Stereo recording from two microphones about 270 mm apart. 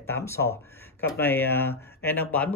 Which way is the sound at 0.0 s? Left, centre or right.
Centre.